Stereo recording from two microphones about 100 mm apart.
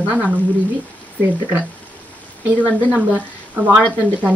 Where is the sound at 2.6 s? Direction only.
15° right (ahead or behind).